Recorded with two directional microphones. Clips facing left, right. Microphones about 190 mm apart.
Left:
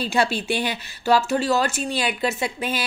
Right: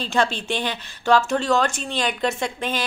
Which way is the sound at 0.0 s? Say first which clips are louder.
Left 1 dB; 10° left (ahead or behind).